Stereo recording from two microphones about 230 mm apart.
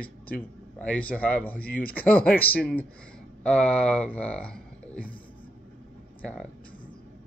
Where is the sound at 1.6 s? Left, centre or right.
Left.